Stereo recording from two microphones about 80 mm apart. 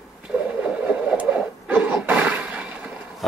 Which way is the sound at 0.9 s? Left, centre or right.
Centre.